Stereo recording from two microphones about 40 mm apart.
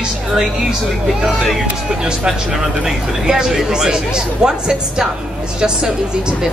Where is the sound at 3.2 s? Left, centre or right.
Centre.